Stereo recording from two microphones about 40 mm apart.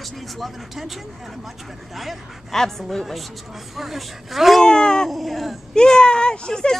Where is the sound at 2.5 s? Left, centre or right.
Centre.